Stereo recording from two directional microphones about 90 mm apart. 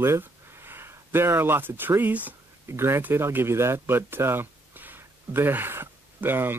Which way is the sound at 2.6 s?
30° right (ahead or behind).